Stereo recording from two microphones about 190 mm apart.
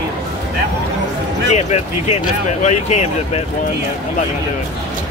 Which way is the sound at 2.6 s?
35° left (ahead or behind).